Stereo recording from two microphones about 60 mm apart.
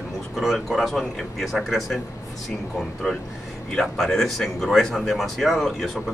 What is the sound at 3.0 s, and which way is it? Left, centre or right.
Speech, centre.